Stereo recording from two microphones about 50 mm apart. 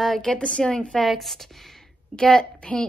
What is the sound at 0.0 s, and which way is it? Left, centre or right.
Speech, centre.